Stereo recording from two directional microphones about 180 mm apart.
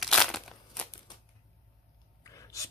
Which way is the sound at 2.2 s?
15° left (ahead or behind).